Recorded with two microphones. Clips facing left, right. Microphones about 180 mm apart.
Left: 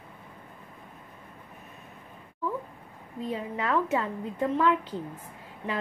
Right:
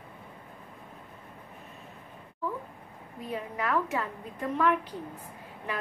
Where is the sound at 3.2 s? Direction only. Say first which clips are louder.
Left 2 dB; 30° left (ahead or behind).